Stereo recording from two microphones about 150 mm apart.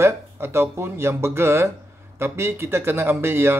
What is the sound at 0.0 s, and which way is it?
Speech, 15° right (ahead or behind).